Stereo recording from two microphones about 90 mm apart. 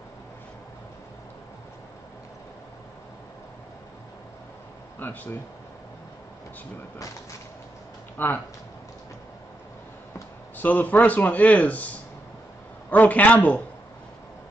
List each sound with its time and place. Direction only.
4.9 s speech: 20° left (ahead or behind)
8.2 s a man's voice: 20° left (ahead or behind)
10.6 s a man's voice: 20° left (ahead or behind)
12.9 s a man's voice: 20° left (ahead or behind)